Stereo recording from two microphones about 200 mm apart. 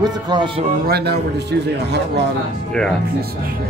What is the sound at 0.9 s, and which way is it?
Speech, 55° right (ahead or behind).